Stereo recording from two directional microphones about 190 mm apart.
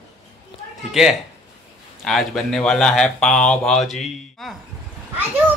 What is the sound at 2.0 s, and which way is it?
A man's voice, centre (ahead or behind).